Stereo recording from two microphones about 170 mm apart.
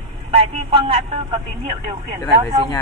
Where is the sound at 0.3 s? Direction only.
30° right (ahead or behind).